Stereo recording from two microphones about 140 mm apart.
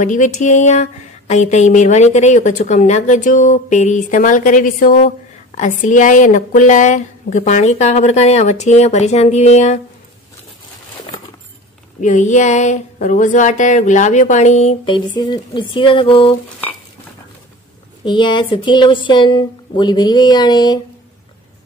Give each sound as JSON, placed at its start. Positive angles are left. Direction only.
{"t": 0.0, "sound": "speech", "side_deg": 65}
{"t": 5.6, "sound": "speech", "side_deg": 65}
{"t": 12.0, "sound": "speech", "side_deg": 60}
{"t": 14.9, "sound": "speech", "side_deg": 35}
{"t": 18.0, "sound": "speech", "side_deg": 35}